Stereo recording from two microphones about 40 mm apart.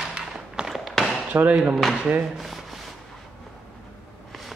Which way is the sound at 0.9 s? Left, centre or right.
Centre.